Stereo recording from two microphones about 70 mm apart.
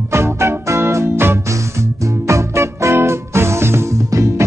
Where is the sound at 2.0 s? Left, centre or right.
Right.